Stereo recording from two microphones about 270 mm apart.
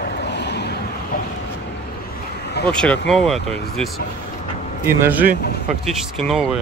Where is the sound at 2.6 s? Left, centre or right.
Centre.